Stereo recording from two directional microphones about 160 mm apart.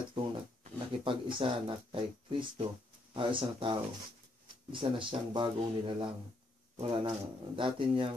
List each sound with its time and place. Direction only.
0.1 s speech: 35° right (ahead or behind)
4.7 s speech: 30° right (ahead or behind)